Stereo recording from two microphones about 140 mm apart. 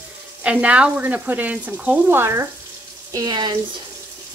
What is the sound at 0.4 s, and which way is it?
Speech, 10° right (ahead or behind).